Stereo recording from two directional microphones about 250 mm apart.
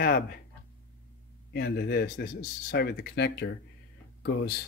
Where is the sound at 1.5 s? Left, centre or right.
Left.